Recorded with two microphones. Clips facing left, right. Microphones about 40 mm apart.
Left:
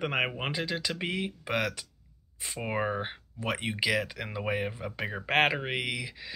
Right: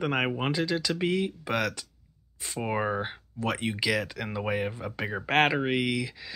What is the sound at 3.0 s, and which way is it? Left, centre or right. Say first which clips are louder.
Speech: right 3 dB; centre.